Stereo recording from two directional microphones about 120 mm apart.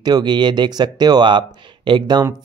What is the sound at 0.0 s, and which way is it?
Speech, 35° right (ahead or behind).